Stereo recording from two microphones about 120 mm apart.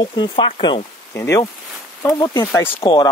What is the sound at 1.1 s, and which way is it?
Speech, 25° left (ahead or behind).